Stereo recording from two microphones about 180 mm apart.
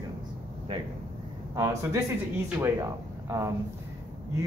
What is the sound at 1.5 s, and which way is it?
Speech, 20° right (ahead or behind).